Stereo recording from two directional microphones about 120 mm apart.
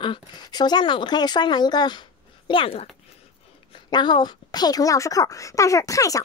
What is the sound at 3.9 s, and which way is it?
Speech, 40° left (ahead or behind).